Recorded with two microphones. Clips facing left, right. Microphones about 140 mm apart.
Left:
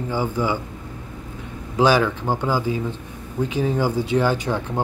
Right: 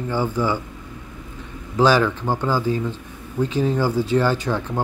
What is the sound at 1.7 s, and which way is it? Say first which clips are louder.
Speech: right 1 dB; 15° left (ahead or behind).